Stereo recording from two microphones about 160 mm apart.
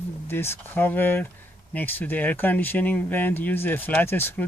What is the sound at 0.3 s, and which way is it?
Speech, 15° left (ahead or behind).